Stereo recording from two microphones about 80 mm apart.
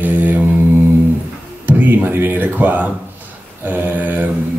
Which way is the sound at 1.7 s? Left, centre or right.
Right.